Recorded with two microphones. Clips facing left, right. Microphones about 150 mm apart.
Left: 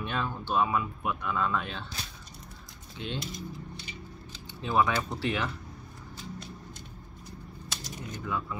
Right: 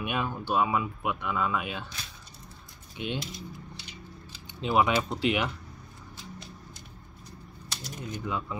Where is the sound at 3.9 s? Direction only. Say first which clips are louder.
Left 2 dB; centre (ahead or behind).